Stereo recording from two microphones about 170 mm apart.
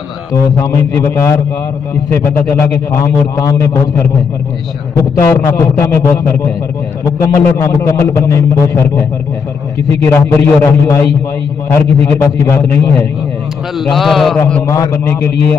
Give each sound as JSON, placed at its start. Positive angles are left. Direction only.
{"t": 0.3, "sound": "a man's voice", "side_deg": 20}
{"t": 2.9, "sound": "a man's voice", "side_deg": 20}
{"t": 5.3, "sound": "a man's voice", "side_deg": 15}
{"t": 10.1, "sound": "a man's voice", "side_deg": 15}
{"t": 13.8, "sound": "a man's voice", "side_deg": 0}
{"t": 14.4, "sound": "a man's voice", "side_deg": 15}